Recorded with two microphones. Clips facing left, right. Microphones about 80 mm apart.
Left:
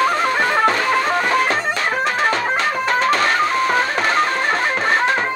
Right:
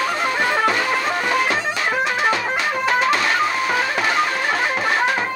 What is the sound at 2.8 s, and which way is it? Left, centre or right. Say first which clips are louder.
Music: even; left.